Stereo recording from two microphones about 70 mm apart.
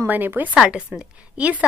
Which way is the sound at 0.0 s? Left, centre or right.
Right.